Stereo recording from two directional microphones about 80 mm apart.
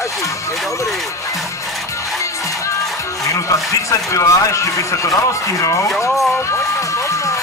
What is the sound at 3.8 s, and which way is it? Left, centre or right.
A man's voice, left.